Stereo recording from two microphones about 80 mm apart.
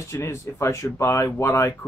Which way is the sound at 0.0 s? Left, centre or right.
Left.